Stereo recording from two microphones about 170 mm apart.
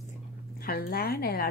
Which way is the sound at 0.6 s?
60° left (ahead or behind).